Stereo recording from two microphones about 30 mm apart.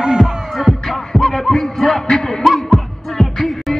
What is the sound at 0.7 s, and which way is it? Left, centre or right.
Music, centre.